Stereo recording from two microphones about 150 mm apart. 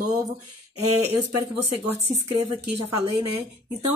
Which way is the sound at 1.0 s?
20° right (ahead or behind).